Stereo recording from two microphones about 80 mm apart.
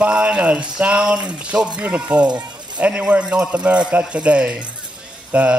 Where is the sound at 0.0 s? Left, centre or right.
Centre.